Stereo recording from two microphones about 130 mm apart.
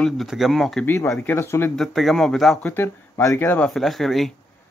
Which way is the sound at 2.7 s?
20° left (ahead or behind).